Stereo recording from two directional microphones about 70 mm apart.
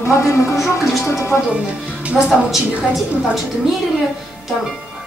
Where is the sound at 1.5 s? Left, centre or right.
Centre.